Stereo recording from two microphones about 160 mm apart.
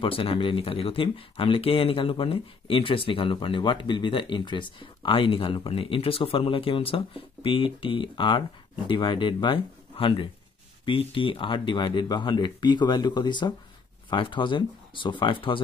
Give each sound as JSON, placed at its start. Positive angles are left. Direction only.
{"t": 0.0, "sound": "speech", "side_deg": 35}